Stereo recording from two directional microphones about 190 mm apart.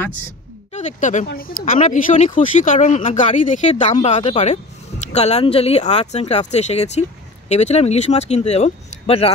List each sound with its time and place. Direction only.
0.7 s speech: 40° left (ahead or behind)
1.2 s speech: 50° left (ahead or behind); by 9.3 s 30° left (ahead or behind)